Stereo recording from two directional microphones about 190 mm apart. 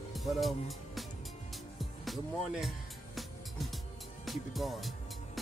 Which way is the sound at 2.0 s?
Centre (ahead or behind).